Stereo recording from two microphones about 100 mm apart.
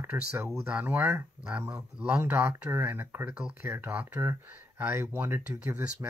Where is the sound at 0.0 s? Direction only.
20° right (ahead or behind).